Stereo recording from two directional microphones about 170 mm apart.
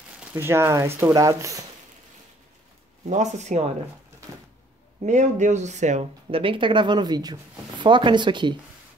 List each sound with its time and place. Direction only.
0.2 s speech: 10° right (ahead or behind)
3.1 s speech: 45° right (ahead or behind)
5.0 s speech: 45° right (ahead or behind); by 8.5 s 25° right (ahead or behind)